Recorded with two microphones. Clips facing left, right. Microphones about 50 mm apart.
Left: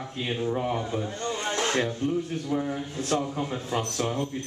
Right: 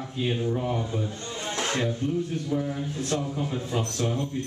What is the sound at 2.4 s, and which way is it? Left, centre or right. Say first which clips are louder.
A man's voice: even; centre.